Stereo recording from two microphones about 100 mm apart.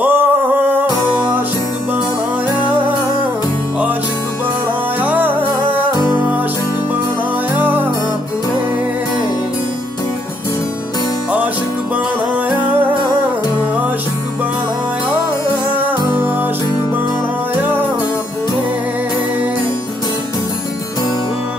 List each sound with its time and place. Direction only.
0.0 s music: 20° right (ahead or behind)
5.0 s music: 15° right (ahead or behind)
7.5 s music: 20° right (ahead or behind)
15.7 s music: 15° right (ahead or behind)
17.6 s music: 20° right (ahead or behind)